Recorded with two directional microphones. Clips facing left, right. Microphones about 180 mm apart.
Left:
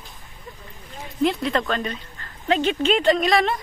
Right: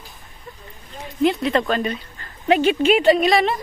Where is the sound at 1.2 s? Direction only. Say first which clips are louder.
Right 3 dB; centre (ahead or behind).